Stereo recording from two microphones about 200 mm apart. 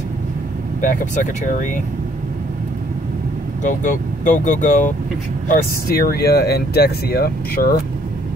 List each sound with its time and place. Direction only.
0.7 s speech: 40° left (ahead or behind)
3.6 s speech: 40° left (ahead or behind)